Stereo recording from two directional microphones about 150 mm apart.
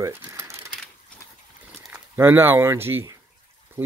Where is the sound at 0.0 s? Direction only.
15° right (ahead or behind).